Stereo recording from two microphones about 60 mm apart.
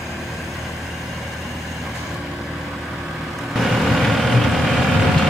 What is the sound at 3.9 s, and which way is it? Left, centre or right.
Vehicle, centre.